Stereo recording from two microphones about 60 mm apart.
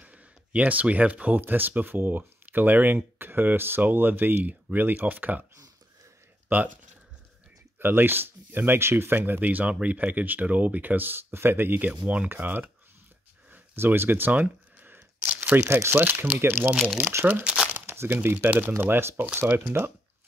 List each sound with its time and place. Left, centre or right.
0.0 s speech: right
7.8 s speech: right
13.5 s a sound: right
15.5 s speech: right
17.4 s crumpling: centre
17.7 s speech: right